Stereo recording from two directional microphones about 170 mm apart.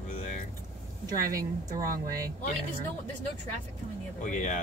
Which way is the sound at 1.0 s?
20° right (ahead or behind).